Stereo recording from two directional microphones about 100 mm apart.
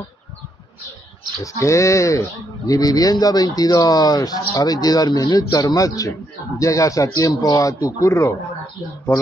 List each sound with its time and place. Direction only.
1.4 s speech: 30° left (ahead or behind)